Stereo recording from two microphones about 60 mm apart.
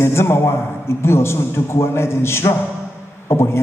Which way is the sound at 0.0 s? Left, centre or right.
Left.